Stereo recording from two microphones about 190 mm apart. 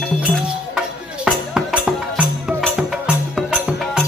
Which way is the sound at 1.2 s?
5° right (ahead or behind).